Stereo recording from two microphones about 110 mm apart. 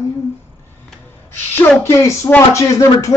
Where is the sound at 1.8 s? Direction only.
25° left (ahead or behind).